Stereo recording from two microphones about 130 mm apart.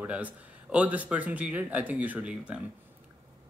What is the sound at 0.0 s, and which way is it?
Speech, 10° right (ahead or behind).